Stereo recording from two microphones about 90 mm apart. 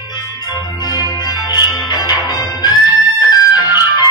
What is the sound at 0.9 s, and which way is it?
Music, 45° left (ahead or behind).